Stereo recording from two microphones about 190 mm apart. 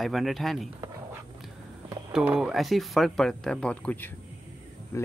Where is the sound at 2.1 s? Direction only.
5° right (ahead or behind).